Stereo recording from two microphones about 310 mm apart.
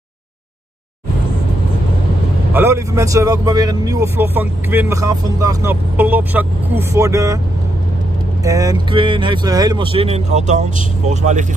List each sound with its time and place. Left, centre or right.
2.5 s speech: centre
8.5 s speech: centre